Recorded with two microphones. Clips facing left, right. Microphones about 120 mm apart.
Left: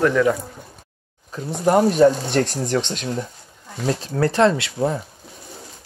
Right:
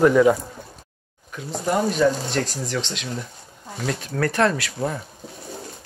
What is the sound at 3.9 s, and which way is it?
Speech, 30° left (ahead or behind).